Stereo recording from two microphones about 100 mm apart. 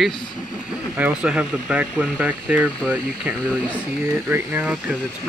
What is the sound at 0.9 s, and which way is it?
Speech, 15° right (ahead or behind).